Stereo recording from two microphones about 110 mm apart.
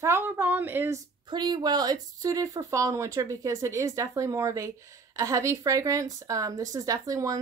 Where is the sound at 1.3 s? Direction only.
40° right (ahead or behind).